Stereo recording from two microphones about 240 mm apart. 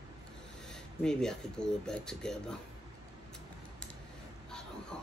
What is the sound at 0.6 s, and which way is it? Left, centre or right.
Speech, centre.